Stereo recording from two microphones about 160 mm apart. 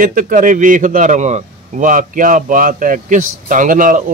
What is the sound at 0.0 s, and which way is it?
A man's voice, 55° right (ahead or behind).